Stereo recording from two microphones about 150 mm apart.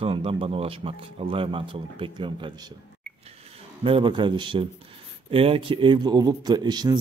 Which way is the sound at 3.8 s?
35° right (ahead or behind).